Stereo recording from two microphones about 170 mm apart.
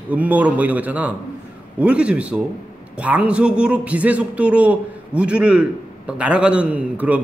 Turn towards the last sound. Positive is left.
turn(degrees=-5)  # may be behind; listen again after turning